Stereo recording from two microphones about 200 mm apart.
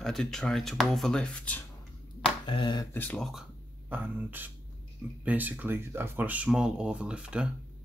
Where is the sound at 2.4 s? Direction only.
20° left (ahead or behind).